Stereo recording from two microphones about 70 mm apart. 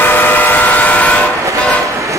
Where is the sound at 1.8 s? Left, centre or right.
Right.